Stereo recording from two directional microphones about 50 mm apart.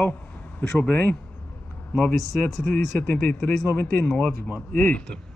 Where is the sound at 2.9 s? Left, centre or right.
Left.